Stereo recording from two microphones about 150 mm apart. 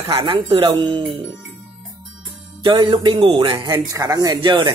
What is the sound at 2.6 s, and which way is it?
A man's voice, 30° right (ahead or behind).